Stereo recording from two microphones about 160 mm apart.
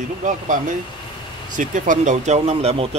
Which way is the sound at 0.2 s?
55° right (ahead or behind).